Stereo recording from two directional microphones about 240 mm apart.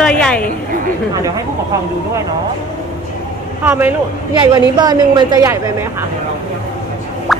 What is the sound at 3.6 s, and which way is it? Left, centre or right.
A woman's voice, centre.